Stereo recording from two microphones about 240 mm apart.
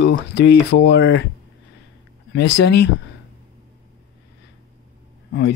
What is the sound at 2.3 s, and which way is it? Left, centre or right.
Speech, left.